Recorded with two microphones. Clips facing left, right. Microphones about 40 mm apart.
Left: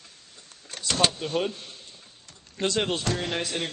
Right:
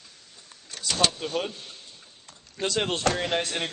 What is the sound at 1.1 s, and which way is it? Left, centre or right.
Speech, centre.